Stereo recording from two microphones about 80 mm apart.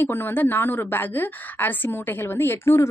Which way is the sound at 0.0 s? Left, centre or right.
Left.